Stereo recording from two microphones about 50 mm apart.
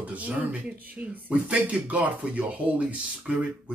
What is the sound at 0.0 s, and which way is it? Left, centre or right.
Speech, right.